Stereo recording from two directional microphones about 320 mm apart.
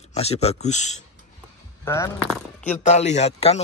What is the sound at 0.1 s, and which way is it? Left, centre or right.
Speech, centre.